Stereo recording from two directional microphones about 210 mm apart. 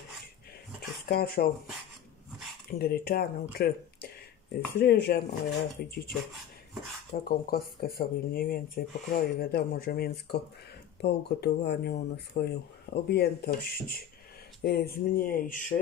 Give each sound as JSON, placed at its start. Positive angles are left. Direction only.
{"t": 1.0, "sound": "speech", "side_deg": 50}
{"t": 2.7, "sound": "speech", "side_deg": 45}
{"t": 4.6, "sound": "speech", "side_deg": 10}
{"t": 4.8, "sound": "speech", "side_deg": 50}
{"t": 7.2, "sound": "speech", "side_deg": 45}